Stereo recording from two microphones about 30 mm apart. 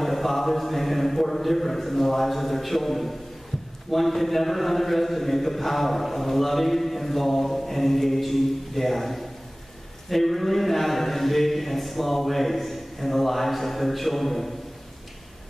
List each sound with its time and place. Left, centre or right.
0.0 s a man's voice: centre